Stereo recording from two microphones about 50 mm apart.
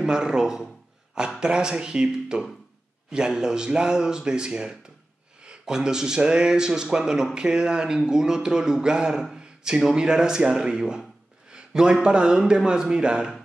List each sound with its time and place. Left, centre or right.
0.0 s a man's voice: centre
9.2 s a sound: centre
9.9 s a man's voice: centre